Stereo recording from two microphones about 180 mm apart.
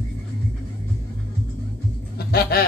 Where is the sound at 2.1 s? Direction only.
60° left (ahead or behind).